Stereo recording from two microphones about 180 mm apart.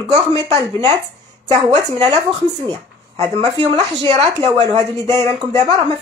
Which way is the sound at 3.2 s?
25° right (ahead or behind).